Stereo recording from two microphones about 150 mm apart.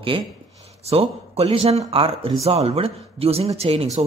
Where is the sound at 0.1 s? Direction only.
35° right (ahead or behind).